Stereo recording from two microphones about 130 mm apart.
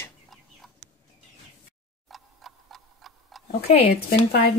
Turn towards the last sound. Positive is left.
turn(degrees=50)  # may be behind; listen again after turning